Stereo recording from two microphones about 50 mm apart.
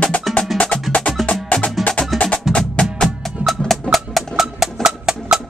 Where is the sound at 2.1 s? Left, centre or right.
Centre.